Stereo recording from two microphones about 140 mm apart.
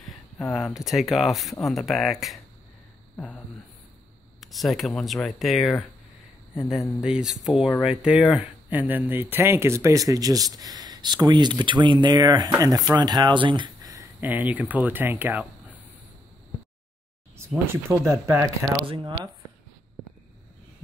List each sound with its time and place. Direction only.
0.0 s speech: centre (ahead or behind)
4.4 s speech: centre (ahead or behind); by 13.7 s 35° right (ahead or behind)
14.2 s speech: 10° right (ahead or behind)
18.1 s speech: 20° right (ahead or behind)